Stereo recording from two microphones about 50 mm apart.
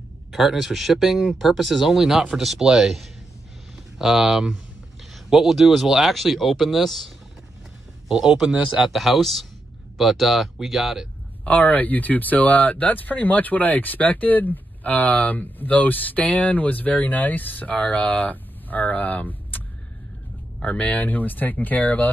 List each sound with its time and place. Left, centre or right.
0.3 s speech: centre
8.1 s speech: centre
11.4 s speech: left
20.6 s speech: left